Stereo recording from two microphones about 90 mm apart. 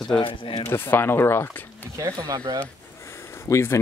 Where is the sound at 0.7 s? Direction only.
25° left (ahead or behind).